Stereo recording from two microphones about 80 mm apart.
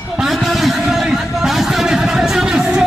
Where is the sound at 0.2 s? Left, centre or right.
Centre.